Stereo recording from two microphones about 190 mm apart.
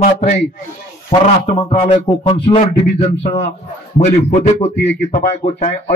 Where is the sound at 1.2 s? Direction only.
30° left (ahead or behind).